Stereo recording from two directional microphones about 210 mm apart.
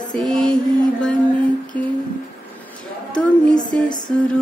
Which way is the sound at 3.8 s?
20° left (ahead or behind).